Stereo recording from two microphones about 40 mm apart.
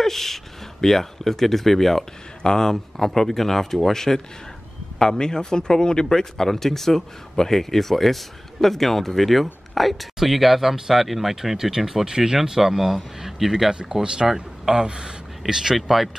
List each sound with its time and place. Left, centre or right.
0.0 s speech: centre
13.7 s speech: centre
15.4 s speech: centre